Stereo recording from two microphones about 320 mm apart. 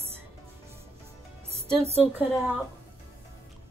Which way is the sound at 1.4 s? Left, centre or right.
Centre.